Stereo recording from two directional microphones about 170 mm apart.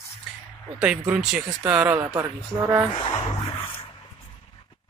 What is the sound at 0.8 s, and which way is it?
Speech, 5° right (ahead or behind).